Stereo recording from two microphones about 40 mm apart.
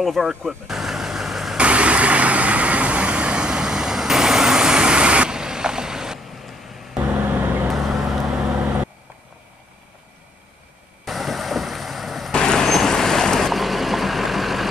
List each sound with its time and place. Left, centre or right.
0.2 s speech: centre
0.7 s vehicle: centre
1.6 s vehicle: right; by 6.1 s centre
7.2 s vehicle: right
7.7 s vehicle: centre
8.3 s vehicle: centre
8.5 s vehicle: right
11.1 s a sound: centre
12.3 s vehicle: centre
13.5 s vehicle: centre